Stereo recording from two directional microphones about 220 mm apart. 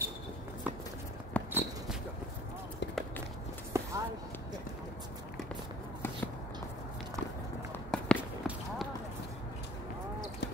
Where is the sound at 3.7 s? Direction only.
15° right (ahead or behind).